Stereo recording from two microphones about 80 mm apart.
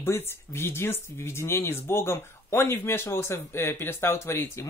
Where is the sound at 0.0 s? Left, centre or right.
Left.